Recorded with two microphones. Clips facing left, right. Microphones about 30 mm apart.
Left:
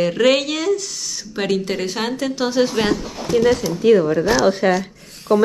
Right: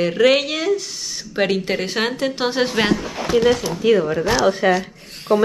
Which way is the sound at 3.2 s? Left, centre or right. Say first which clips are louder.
Even; right.